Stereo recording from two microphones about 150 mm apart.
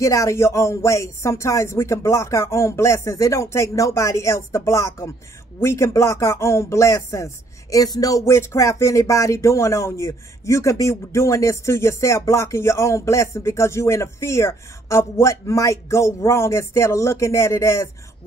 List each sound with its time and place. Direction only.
0.0 s speech: 20° left (ahead or behind)